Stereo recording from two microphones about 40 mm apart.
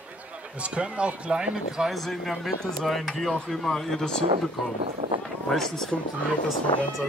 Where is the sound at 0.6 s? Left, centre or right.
Right.